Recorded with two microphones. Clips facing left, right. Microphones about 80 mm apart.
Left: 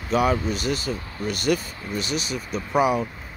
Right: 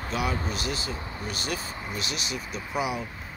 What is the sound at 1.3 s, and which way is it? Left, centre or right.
Speech, left.